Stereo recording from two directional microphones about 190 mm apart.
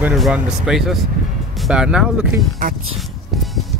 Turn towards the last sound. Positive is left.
turn(degrees=0)  # may be behind; listen again after turning